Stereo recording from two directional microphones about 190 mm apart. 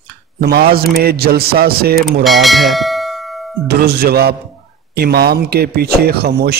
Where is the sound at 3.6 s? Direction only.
55° right (ahead or behind).